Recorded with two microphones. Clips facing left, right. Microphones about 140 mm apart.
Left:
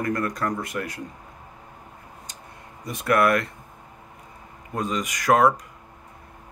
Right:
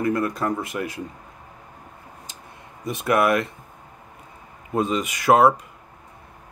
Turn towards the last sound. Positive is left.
turn(degrees=-25)  # may be behind; listen again after turning